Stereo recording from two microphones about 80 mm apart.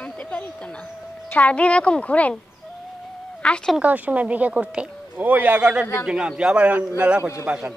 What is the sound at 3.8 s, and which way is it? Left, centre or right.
A man's voice, centre.